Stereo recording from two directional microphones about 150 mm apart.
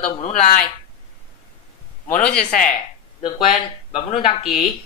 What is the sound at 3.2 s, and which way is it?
Speech, 35° left (ahead or behind).